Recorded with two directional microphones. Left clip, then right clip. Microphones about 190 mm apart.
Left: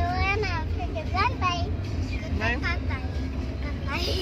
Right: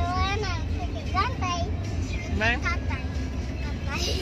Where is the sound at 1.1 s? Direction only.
10° left (ahead or behind).